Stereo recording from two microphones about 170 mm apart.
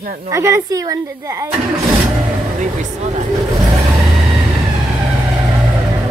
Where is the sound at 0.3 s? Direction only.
15° right (ahead or behind).